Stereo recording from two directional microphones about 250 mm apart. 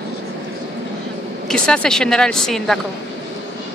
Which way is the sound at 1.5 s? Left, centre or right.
Centre.